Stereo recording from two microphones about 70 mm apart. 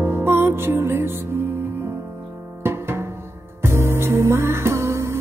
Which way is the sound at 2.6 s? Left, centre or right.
Right.